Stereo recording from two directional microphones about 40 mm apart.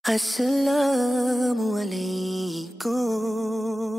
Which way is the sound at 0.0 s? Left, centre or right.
Centre.